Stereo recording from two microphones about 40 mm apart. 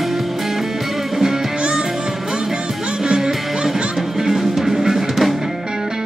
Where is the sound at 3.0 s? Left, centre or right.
Centre.